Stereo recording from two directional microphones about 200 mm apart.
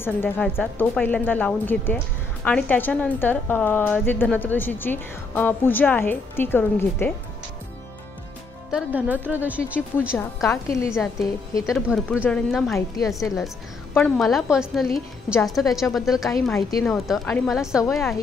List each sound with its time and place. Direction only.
0.0 s a woman's voice: 10° left (ahead or behind)
8.7 s a woman's voice: 5° right (ahead or behind)
10.1 s a woman's voice: 15° left (ahead or behind)
11.7 s a woman's voice: centre (ahead or behind)